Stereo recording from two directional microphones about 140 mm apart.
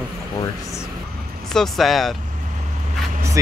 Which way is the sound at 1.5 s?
Centre (ahead or behind).